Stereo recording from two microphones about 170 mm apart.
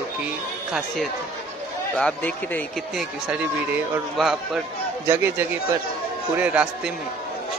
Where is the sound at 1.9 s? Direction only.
10° left (ahead or behind).